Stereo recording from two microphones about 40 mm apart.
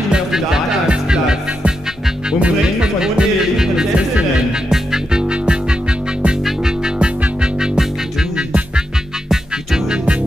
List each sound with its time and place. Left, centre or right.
0.1 s music: centre
2.4 s speech: right
3.9 s music: right
4.6 s music: centre
5.3 s music: right
8.4 s music: right